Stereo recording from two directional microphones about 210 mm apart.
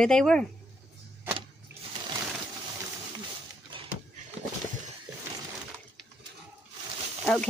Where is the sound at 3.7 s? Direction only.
25° right (ahead or behind).